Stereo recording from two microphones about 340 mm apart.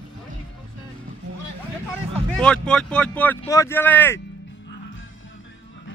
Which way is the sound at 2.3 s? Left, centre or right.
Centre.